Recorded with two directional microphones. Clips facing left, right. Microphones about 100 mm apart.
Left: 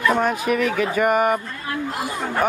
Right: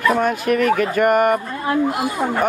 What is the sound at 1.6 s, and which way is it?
Speech, 15° right (ahead or behind).